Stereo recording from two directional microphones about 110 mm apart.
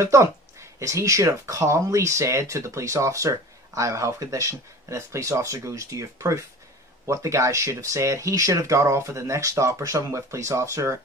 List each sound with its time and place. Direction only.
0.0 s speech: 25° right (ahead or behind)